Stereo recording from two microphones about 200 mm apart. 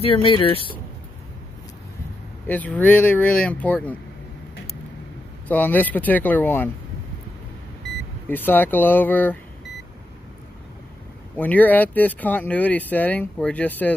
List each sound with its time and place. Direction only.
0.0 s speech: 25° left (ahead or behind)
2.4 s speech: 10° left (ahead or behind)
5.5 s speech: 10° left (ahead or behind)
8.3 s speech: 10° left (ahead or behind)
11.3 s speech: 10° left (ahead or behind)